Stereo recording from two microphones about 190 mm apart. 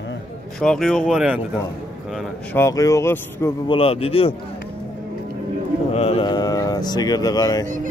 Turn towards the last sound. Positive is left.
turn(degrees=-45)  # may be behind; listen again after turning